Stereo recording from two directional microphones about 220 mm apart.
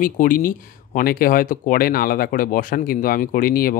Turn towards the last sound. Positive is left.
turn(degrees=40)  # may be behind; listen again after turning